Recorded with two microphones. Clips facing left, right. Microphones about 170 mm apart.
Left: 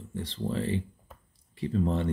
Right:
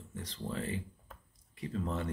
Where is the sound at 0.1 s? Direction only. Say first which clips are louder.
Left 8 dB; 30° left (ahead or behind).